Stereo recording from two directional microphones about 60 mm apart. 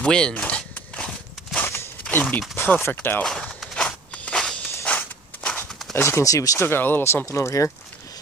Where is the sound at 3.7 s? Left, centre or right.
Centre.